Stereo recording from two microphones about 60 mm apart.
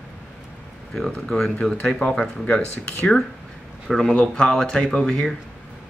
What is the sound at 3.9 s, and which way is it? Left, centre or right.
Speech, centre.